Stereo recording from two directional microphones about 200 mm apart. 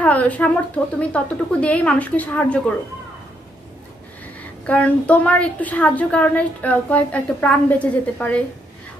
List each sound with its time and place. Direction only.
0.0 s a woman's voice: 5° left (ahead or behind)
4.6 s a woman's voice: 5° left (ahead or behind)